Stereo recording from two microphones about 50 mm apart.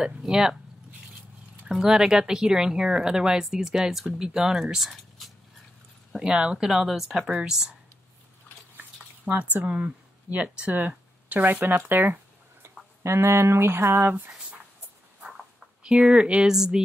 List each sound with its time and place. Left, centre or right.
0.2 s speech: centre
1.7 s speech: centre
6.1 s speech: centre
7.2 s speech: centre
9.4 s speech: right
9.7 s speech: right
10.7 s speech: right
12.6 s speech: right
14.3 s a sound: centre
15.8 s speech: centre
16.5 s speech: centre